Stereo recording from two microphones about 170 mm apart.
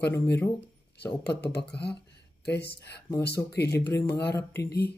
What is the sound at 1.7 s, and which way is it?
Speech, 80° left.